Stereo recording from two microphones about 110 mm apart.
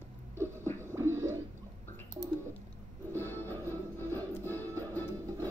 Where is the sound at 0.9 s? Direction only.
25° right (ahead or behind).